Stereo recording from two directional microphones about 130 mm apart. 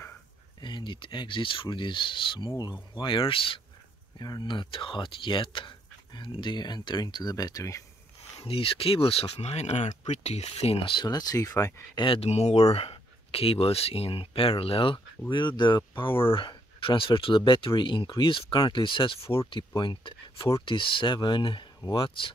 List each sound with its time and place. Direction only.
0.6 s speech: 35° left (ahead or behind)
4.2 s speech: 35° left (ahead or behind)
8.4 s speech: 45° left (ahead or behind); by 12.0 s 25° left (ahead or behind)
12.0 s speech: 45° left (ahead or behind)
16.1 s speech: 15° left (ahead or behind)
16.3 s speech: 40° left (ahead or behind)